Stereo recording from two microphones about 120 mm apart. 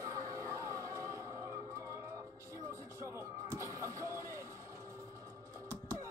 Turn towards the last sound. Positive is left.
turn(degrees=-25)  # may be behind; listen again after turning